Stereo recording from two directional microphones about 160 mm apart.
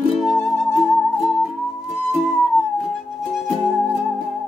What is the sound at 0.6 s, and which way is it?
Music, centre (ahead or behind).